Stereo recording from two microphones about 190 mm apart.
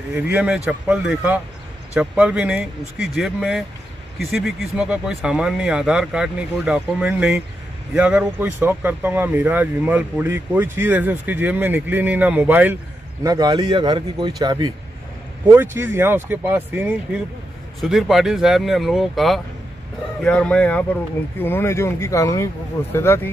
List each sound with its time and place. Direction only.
0.1 s a man's voice: 10° right (ahead or behind)
15.4 s speech: 10° right (ahead or behind); by 23.3 s 10° left (ahead or behind)